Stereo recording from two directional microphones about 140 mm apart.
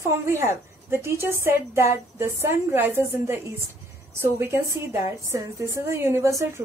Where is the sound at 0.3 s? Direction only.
15° right (ahead or behind).